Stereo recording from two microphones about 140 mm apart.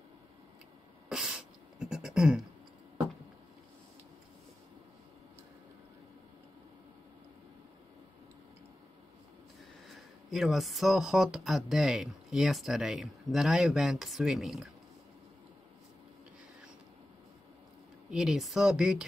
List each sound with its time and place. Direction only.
1.0 s a sound: 5° right (ahead or behind)
9.8 s speech: centre (ahead or behind)
18.1 s speech: 5° right (ahead or behind)